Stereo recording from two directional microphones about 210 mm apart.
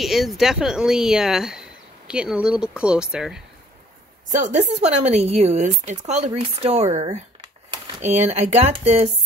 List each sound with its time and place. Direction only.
0.0 s speech: centre (ahead or behind)
4.3 s speech: 35° right (ahead or behind)
7.7 s typewriter: 25° right (ahead or behind)
8.3 s speech: 30° right (ahead or behind)